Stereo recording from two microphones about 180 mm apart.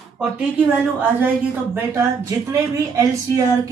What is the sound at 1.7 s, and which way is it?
Speech, 15° right (ahead or behind).